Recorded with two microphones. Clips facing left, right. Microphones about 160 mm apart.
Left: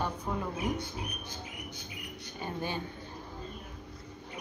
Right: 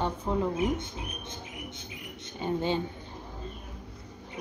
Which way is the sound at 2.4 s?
20° right (ahead or behind).